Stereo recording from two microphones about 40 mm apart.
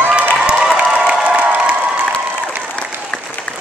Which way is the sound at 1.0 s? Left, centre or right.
Right.